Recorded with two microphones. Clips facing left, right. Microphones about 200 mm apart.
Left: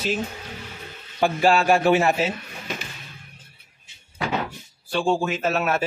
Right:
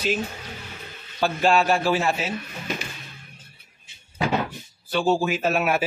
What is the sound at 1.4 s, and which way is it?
Speech, 10° left (ahead or behind).